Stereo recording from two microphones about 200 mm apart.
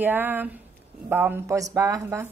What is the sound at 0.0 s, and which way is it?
A woman's voice, 10° right (ahead or behind).